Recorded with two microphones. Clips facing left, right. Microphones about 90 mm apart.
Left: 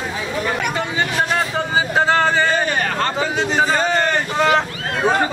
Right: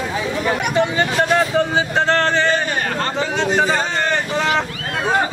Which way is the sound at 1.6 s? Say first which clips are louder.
Right 1 dB; 5° left (ahead or behind).